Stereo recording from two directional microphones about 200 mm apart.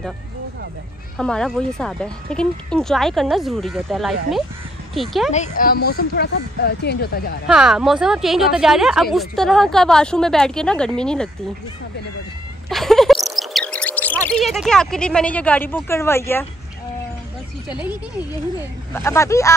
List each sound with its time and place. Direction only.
1.1 s a woman's voice: 5° left (ahead or behind)
5.3 s speech: 40° left (ahead or behind)
7.4 s a woman's voice: 5° right (ahead or behind)
12.6 s a sound: centre (ahead or behind)
13.4 s speech: centre (ahead or behind)
18.9 s speech: 15° left (ahead or behind)